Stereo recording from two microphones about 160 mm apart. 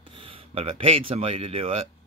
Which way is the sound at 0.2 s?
35° right (ahead or behind).